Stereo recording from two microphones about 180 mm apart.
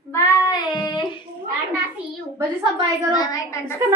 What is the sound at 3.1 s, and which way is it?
Child singing, 20° left (ahead or behind).